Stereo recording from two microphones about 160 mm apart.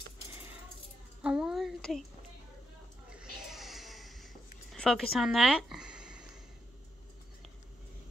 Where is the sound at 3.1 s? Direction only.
5° right (ahead or behind).